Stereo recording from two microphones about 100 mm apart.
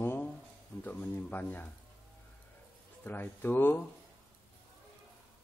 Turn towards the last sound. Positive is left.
turn(degrees=20)  # may be behind; listen again after turning